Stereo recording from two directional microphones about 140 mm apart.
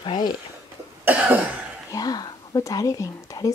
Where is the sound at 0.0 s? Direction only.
35° left (ahead or behind).